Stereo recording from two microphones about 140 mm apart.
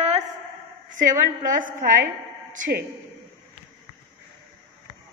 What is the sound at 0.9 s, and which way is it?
Speech, 70° right (ahead or behind).